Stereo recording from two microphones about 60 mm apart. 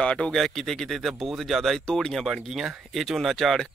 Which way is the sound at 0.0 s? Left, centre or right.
Centre.